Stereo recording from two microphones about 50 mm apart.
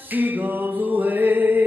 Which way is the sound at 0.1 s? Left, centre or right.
Right.